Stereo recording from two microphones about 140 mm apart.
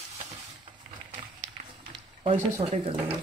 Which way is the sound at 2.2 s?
50° right (ahead or behind).